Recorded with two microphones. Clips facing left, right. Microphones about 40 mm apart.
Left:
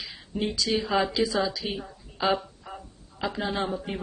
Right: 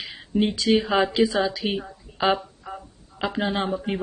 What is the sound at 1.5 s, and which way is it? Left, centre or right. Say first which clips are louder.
Speech: right 5 dB; right.